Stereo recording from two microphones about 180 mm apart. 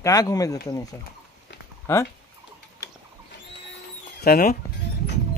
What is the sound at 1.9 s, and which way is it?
Speech, 15° left (ahead or behind).